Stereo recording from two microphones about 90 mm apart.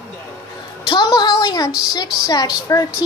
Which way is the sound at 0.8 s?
55° left (ahead or behind).